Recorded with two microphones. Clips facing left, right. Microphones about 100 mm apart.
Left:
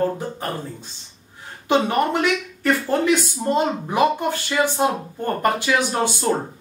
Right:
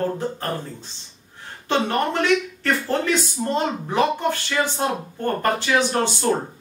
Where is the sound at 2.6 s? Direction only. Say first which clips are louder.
Left 3 dB; 10° left (ahead or behind).